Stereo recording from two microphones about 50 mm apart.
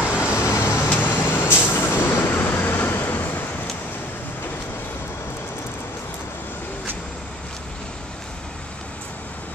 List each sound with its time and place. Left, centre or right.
0.2 s vehicle: left
0.6 s vehicle: left
0.8 s vehicle: left